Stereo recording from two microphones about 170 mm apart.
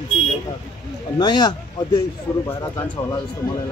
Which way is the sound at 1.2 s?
25° left (ahead or behind).